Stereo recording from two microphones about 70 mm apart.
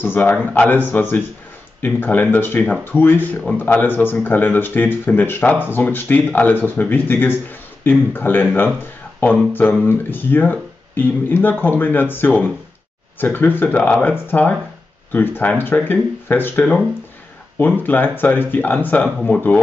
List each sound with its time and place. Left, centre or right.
0.0 s speech: left
17.8 s speech: left